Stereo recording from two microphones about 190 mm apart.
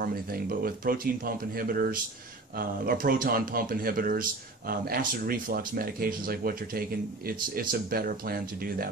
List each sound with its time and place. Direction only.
0.0 s speech: 50° right (ahead or behind)